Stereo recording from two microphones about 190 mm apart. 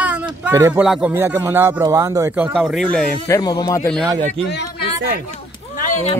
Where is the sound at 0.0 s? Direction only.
10° right (ahead or behind).